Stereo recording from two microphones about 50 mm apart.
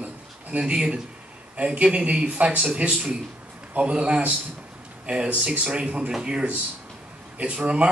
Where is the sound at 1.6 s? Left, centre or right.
Right.